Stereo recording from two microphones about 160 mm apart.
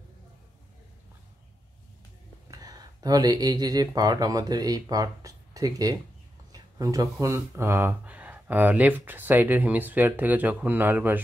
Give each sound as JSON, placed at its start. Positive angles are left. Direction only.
{"t": 2.4, "sound": "speech", "side_deg": -20}